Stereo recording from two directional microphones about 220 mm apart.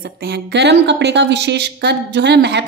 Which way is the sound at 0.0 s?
50° right (ahead or behind).